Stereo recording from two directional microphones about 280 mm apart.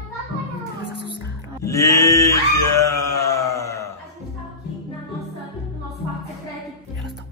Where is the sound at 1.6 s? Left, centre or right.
Centre.